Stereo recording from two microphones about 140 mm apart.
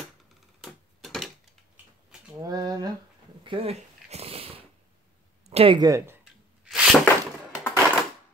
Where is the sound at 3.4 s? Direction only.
40° right (ahead or behind).